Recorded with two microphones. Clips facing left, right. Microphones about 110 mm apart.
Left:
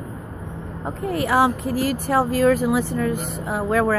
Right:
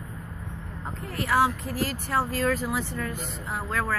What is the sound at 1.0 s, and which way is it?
Speech, 10° left (ahead or behind).